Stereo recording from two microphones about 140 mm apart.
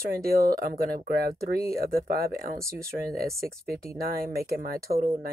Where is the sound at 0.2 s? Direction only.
90° right.